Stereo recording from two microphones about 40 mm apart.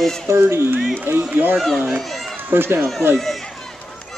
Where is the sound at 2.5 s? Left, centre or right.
Right.